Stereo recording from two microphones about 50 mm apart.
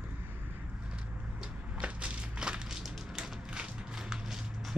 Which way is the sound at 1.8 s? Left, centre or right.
Right.